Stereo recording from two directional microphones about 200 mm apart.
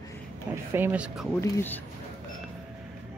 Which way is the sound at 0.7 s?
10° right (ahead or behind).